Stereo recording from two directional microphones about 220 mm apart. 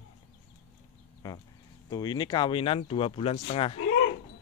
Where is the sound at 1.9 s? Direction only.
20° left (ahead or behind).